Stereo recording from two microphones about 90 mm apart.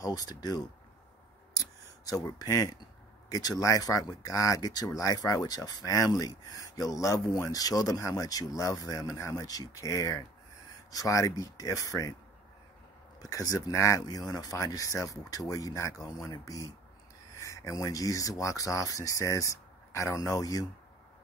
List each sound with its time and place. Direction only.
0.0 s speech: 45° left (ahead or behind)
1.6 s a sound: 40° left (ahead or behind)
3.3 s speech: 45° left (ahead or behind)
13.2 s speech: 40° left (ahead or behind)
14.0 s speech: 45° left (ahead or behind)